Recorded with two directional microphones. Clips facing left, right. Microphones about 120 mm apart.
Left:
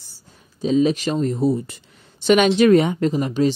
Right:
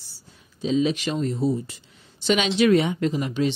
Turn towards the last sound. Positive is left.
turn(degrees=40)  # may be behind; listen again after turning